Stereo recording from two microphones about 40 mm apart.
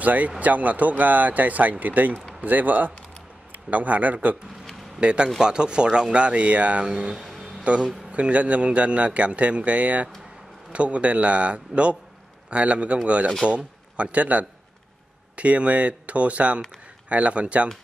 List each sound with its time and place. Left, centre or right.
0.0 s speech: right
5.0 s speech: right
7.2 s a sound: centre
7.7 s speech: right